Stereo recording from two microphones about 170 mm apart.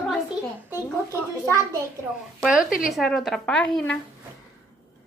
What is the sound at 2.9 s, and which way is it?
A child's voice, centre (ahead or behind).